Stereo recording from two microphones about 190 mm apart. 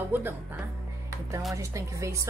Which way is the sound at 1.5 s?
15° right (ahead or behind).